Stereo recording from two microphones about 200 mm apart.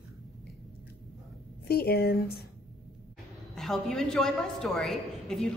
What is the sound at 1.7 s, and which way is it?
Speech, 50° left (ahead or behind).